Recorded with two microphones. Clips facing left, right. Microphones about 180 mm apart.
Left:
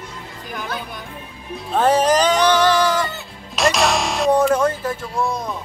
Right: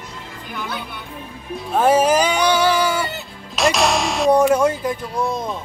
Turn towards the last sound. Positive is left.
turn(degrees=-20)  # may be behind; listen again after turning